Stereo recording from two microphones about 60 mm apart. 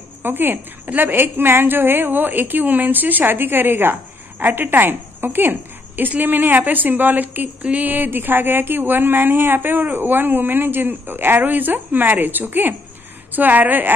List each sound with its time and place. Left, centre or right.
0.2 s a woman's voice: right